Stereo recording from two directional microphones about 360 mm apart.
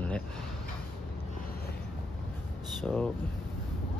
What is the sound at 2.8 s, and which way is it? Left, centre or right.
Speech, centre.